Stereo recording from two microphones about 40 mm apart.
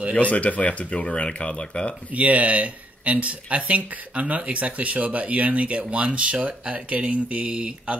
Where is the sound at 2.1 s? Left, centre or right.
Right.